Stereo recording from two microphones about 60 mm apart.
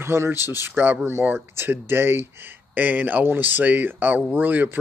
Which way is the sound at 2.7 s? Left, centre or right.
Right.